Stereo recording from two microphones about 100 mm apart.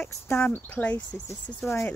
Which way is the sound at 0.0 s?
25° left (ahead or behind).